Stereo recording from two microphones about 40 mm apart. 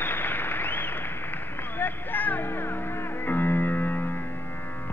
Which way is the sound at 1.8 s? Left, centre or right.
Left.